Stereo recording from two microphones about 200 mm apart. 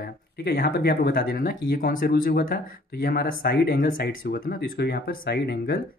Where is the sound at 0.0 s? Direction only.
50° left (ahead or behind).